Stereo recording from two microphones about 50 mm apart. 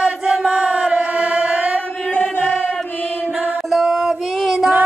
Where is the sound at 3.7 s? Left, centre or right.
Centre.